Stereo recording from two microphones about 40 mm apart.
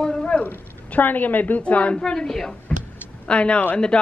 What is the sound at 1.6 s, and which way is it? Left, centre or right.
Speech, left.